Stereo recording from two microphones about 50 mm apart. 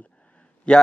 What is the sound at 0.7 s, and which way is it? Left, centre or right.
Speech, centre.